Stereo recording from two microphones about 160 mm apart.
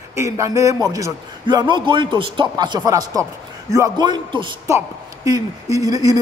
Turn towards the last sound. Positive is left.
turn(degrees=-25)  # may be behind; listen again after turning